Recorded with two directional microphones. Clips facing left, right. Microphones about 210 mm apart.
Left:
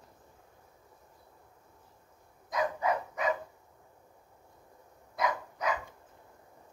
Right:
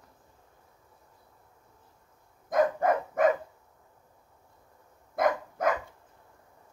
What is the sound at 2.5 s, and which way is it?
Dog, 50° right (ahead or behind).